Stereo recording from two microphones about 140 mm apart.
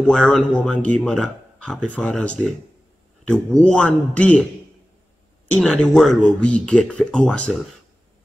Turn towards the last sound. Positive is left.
turn(degrees=5)  # may be behind; listen again after turning